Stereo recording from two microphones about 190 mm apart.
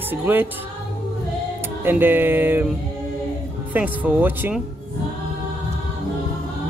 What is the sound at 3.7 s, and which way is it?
Speech, 10° right (ahead or behind).